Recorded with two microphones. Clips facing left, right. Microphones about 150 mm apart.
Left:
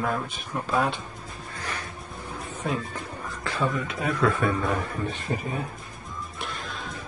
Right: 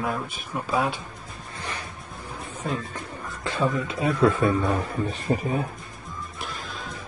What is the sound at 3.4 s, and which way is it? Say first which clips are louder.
A man's voice: right 2 dB; 20° right (ahead or behind).